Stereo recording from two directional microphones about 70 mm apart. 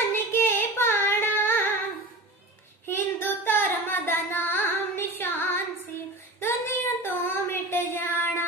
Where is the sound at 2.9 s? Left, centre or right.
Left.